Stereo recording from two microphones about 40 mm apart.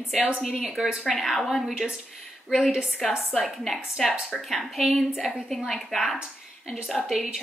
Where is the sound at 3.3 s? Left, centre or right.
Centre.